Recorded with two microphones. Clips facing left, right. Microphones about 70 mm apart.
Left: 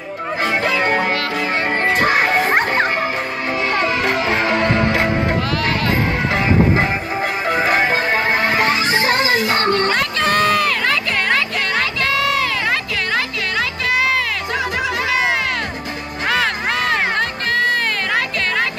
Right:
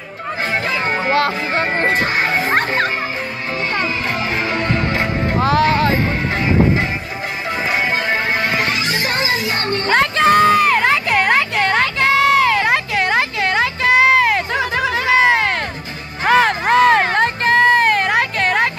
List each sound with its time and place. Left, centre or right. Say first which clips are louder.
1.1 s music: right 3 dB; right
2.0 s music: left 2 dB; left
3.8 s music: left 3 dB; left
4.2 s music: left 3 dB; left
5.4 s music: right 6 dB; right
7.4 s music: left 3 dB; left
9.8 s a sound: right 4 dB; right